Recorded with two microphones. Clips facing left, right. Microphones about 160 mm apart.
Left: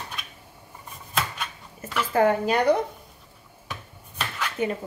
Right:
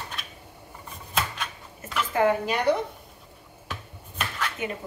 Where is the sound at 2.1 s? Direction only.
40° left (ahead or behind).